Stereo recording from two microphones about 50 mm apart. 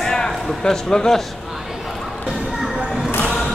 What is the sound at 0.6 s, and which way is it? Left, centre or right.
Speech, centre.